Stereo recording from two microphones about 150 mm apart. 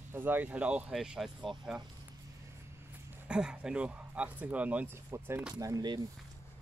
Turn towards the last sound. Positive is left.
turn(degrees=-25)  # may be behind; listen again after turning